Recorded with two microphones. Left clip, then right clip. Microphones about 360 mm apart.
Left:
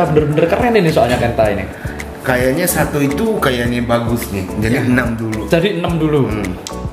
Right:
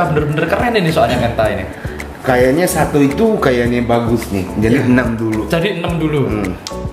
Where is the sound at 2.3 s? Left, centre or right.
Left.